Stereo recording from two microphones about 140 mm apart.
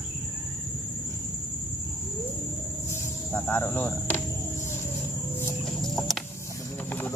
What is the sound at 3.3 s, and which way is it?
Speech, 15° left (ahead or behind).